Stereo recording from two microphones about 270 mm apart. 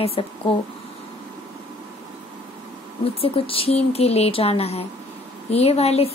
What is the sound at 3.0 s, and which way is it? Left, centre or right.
Speech, left.